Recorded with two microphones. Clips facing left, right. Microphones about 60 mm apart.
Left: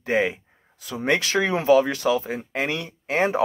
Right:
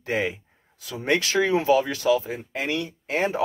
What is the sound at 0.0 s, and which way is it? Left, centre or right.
Speech, left.